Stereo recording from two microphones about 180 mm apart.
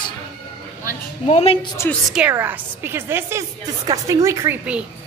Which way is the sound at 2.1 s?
10° right (ahead or behind).